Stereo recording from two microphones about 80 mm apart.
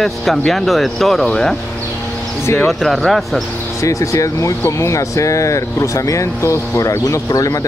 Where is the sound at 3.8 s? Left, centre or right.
Left.